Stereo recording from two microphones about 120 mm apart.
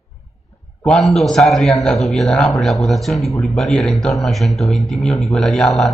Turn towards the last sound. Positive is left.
turn(degrees=0)  # may be behind; listen again after turning